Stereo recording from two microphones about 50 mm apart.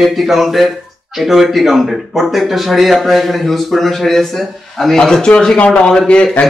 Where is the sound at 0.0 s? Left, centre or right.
Centre.